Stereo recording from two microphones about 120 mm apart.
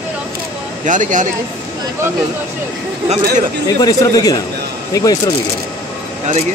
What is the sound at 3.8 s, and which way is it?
A man's voice, 30° left (ahead or behind).